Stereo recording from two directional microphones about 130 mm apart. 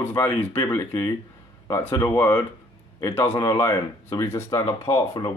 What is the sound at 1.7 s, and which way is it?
Speech, 20° left (ahead or behind).